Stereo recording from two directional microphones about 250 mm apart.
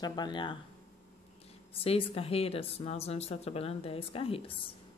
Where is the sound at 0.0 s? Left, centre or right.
Centre.